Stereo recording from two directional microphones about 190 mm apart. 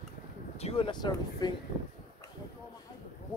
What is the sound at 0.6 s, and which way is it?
Speech, 30° left (ahead or behind).